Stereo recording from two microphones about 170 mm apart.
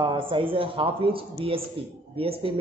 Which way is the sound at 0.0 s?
30° right (ahead or behind).